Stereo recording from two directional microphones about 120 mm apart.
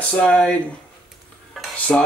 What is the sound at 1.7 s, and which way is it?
Stir, 10° left (ahead or behind).